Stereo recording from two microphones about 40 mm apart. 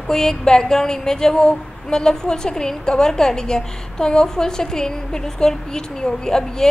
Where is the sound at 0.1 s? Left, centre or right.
Centre.